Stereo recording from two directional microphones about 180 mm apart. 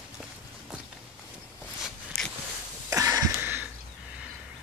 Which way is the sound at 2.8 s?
20° right (ahead or behind).